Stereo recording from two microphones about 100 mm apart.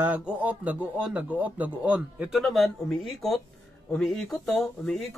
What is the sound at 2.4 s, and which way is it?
Speech, centre (ahead or behind).